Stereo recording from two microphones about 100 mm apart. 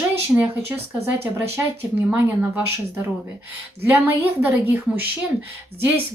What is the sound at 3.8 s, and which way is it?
Speech, 20° right (ahead or behind).